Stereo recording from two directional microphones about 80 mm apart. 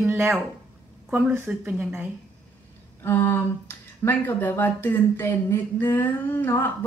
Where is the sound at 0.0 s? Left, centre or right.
Right.